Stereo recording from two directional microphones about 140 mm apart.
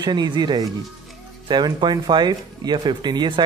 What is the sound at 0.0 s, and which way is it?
Speech, 30° right (ahead or behind).